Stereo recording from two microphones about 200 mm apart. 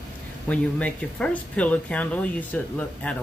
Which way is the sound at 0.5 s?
5° left (ahead or behind).